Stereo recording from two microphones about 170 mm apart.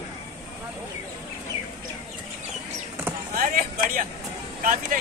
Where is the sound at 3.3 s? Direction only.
55° right (ahead or behind).